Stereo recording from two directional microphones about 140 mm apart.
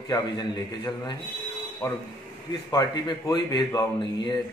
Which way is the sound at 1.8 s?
20° left (ahead or behind).